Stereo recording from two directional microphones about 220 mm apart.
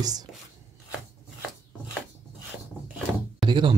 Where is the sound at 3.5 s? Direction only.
20° right (ahead or behind).